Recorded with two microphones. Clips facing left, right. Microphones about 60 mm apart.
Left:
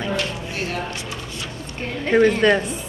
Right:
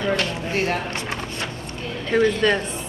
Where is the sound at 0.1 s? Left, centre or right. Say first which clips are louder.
Right 2 dB; right.